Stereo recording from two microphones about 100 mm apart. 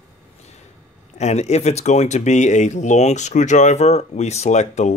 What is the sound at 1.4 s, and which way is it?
Speech, 90° left.